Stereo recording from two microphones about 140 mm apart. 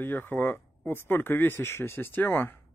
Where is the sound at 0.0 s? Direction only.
15° left (ahead or behind).